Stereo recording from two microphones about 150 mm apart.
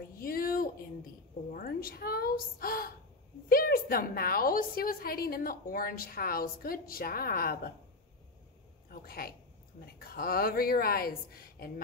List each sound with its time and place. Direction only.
0.2 s a sound: 75° left (ahead or behind)
3.4 s a woman's voice: 80° left
8.9 s a woman's voice: 80° left